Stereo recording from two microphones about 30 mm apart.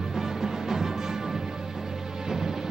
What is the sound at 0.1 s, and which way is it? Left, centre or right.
Music, centre.